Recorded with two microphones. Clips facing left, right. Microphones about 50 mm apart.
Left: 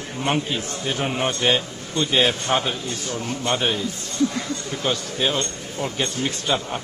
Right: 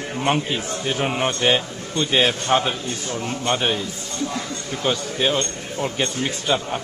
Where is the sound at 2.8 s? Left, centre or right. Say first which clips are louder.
Right 1 dB; right.